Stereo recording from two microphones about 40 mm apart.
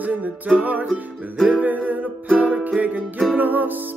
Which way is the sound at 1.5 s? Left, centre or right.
Right.